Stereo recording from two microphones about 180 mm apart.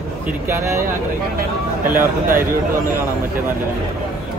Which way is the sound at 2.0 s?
50° right (ahead or behind).